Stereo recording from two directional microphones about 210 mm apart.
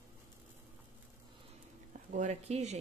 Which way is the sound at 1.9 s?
35° right (ahead or behind).